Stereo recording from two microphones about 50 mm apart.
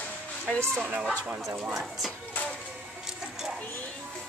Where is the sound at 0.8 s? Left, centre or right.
Right.